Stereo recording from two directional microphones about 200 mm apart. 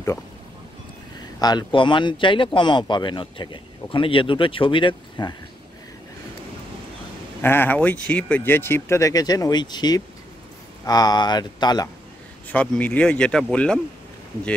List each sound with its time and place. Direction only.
1.4 s speech: 20° left (ahead or behind)
7.4 s speech: 10° left (ahead or behind)
12.4 s speech: 5° left (ahead or behind)